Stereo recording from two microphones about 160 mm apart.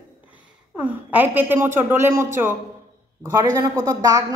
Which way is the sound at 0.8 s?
10° right (ahead or behind).